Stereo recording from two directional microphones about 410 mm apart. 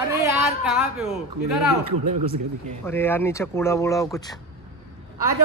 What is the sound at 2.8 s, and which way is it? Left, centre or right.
Speech, centre.